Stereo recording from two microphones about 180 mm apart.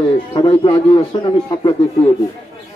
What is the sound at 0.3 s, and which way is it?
A man's voice, 30° left (ahead or behind).